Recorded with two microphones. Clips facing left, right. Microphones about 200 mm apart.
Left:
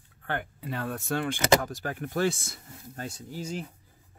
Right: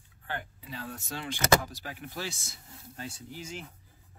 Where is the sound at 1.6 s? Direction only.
50° left (ahead or behind).